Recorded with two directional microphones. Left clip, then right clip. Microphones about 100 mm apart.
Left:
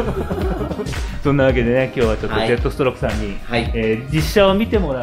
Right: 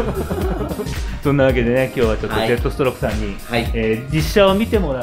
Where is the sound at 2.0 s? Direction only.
Centre (ahead or behind).